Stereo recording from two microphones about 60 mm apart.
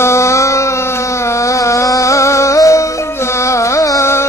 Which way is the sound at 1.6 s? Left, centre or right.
Left.